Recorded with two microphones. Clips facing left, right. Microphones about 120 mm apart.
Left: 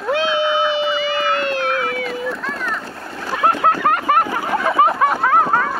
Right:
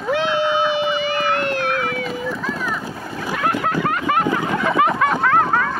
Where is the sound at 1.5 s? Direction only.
20° left (ahead or behind).